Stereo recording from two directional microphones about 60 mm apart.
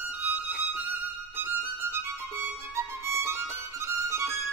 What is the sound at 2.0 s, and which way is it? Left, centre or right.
Music, right.